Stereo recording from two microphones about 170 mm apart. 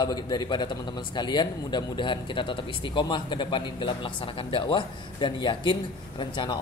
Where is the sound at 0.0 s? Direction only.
25° left (ahead or behind).